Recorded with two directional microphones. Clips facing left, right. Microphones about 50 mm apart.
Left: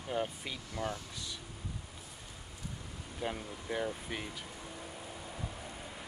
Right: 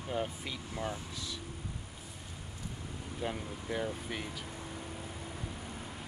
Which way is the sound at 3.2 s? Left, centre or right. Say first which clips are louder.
Even; centre.